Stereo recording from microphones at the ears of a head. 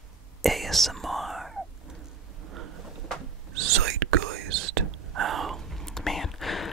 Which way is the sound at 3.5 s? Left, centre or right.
Right.